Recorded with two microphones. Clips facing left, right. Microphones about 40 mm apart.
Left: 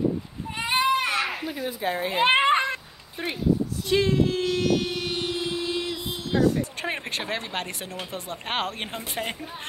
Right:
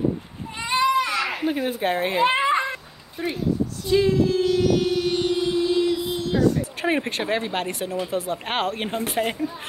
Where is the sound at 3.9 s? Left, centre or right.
Left.